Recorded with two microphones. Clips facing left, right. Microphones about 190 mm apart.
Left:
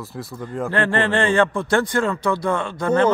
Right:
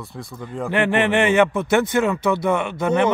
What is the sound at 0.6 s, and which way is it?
A man's voice, 20° right (ahead or behind).